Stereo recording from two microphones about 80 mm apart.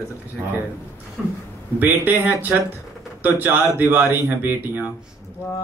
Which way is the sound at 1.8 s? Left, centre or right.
Right.